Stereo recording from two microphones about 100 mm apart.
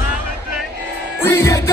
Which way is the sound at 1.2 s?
25° left (ahead or behind).